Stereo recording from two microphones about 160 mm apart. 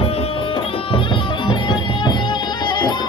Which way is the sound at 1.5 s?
25° left (ahead or behind).